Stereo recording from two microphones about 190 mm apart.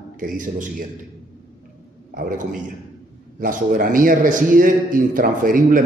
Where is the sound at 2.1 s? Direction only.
45° right (ahead or behind).